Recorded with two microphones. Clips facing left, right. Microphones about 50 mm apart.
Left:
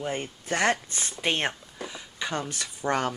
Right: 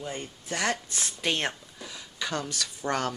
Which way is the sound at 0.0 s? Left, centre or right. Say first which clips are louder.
Left 5 dB; left.